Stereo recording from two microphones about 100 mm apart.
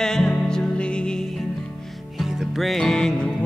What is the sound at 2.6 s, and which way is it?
Music, 5° left (ahead or behind).